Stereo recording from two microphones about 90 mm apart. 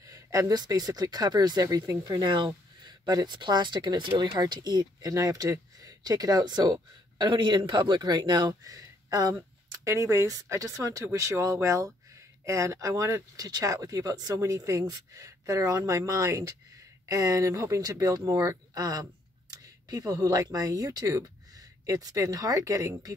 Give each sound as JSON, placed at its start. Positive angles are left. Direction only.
{"t": 0.0, "sound": "speech", "side_deg": -40}